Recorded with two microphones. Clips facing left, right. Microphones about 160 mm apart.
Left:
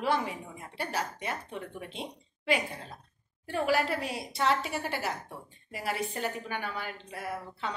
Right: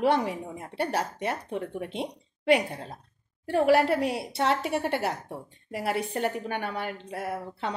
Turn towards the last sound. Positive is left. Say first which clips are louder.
# right 4 dB
turn(degrees=-60)  # may be behind; listen again after turning